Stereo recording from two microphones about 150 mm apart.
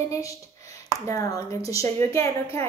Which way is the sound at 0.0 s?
20° left (ahead or behind).